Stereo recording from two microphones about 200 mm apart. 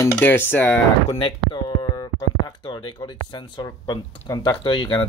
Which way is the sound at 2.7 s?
25° left (ahead or behind).